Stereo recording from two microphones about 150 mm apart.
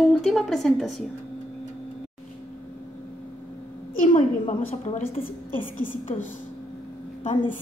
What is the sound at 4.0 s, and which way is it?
A woman's voice, 55° left (ahead or behind).